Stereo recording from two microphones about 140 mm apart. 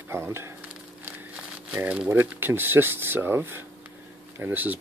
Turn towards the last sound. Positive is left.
turn(degrees=-15)  # may be behind; listen again after turning